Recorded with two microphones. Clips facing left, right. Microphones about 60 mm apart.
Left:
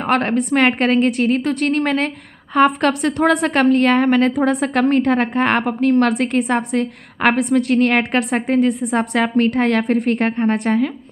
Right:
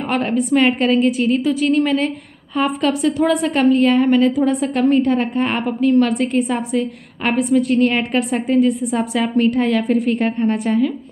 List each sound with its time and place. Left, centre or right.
0.1 s a woman's voice: left